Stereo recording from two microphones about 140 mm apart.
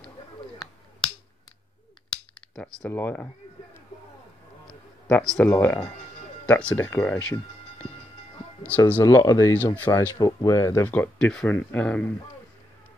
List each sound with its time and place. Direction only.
2.5 s speech: 5° left (ahead or behind)
5.0 s speech: 10° left (ahead or behind)
8.6 s speech: 10° left (ahead or behind)
9.0 s speech: 25° left (ahead or behind)
9.8 s speech: 15° left (ahead or behind)
10.1 s speech: 25° left (ahead or behind)
10.9 s speech: 10° left (ahead or behind)